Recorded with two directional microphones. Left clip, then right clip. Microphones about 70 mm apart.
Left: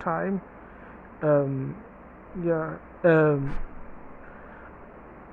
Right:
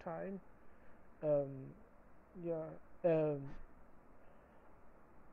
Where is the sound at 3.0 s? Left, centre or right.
Centre.